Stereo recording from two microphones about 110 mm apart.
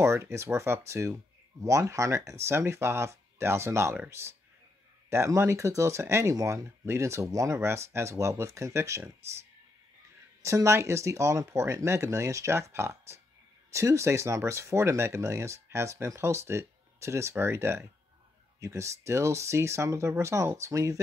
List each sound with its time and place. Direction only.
0.0 s speech: 25° right (ahead or behind)
10.4 s speech: 25° right (ahead or behind)